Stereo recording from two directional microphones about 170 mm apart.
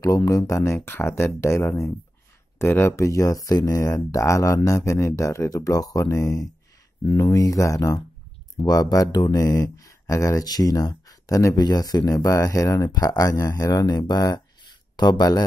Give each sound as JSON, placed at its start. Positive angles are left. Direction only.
{"t": 0.0, "sound": "speech", "side_deg": 20}